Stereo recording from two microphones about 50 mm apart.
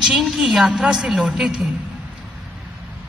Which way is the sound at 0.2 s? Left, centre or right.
Centre.